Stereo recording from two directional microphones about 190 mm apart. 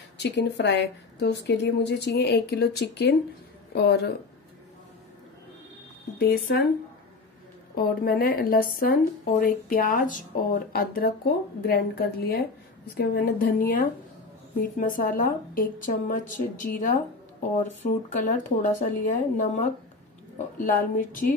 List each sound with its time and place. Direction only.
0.2 s a woman's voice: 65° left (ahead or behind)
6.1 s a woman's voice: 55° left (ahead or behind)
7.7 s a woman's voice: 50° left (ahead or behind)